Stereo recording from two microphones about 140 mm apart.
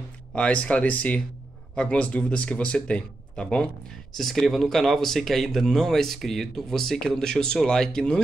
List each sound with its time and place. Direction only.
0.3 s speech: 10° left (ahead or behind)